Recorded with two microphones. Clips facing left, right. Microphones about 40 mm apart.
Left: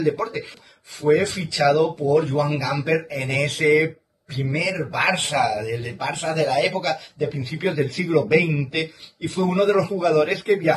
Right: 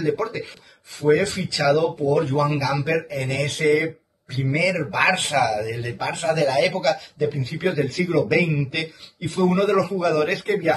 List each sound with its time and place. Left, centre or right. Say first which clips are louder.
0.0 s a man's voice: left 1 dB; centre
3.3 s speech: left 4 dB; centre
4.5 s a man's voice: right 3 dB; centre
6.8 s speech: right 2 dB; centre
7.3 s a man's voice: even; centre